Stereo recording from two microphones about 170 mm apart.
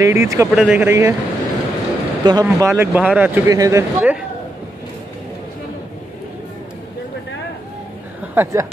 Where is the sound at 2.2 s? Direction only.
25° right (ahead or behind).